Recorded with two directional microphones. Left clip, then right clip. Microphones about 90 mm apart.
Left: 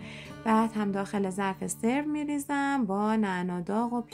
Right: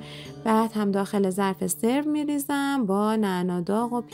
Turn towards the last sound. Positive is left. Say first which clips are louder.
# right 4 dB
turn(degrees=-60)  # may be behind; listen again after turning